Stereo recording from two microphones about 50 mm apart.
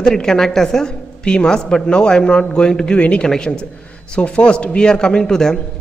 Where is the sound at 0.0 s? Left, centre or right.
Centre.